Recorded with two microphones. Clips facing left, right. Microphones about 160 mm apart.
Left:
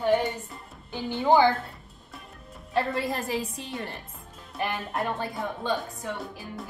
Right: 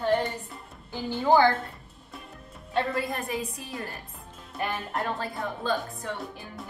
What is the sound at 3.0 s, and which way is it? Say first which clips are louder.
A woman's voice: left 2 dB; 30° left (ahead or behind).